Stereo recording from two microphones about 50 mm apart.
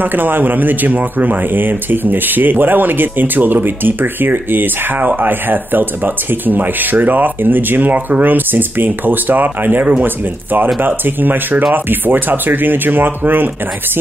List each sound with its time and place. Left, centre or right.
0.0 s speech: right